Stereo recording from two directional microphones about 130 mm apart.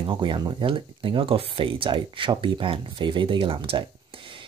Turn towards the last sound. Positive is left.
turn(degrees=-40)  # may be behind; listen again after turning